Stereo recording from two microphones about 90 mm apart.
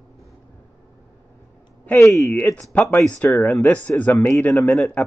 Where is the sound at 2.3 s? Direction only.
20° left (ahead or behind).